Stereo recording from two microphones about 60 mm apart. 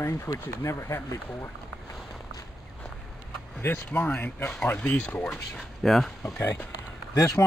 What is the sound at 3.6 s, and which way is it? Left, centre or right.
Speech, left.